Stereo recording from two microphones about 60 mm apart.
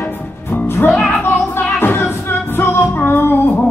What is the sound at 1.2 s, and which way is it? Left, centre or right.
Music, left.